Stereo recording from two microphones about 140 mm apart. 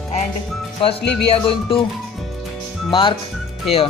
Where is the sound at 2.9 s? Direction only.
35° left (ahead or behind).